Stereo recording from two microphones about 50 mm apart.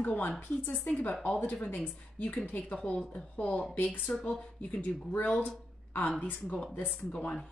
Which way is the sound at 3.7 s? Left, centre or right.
Left.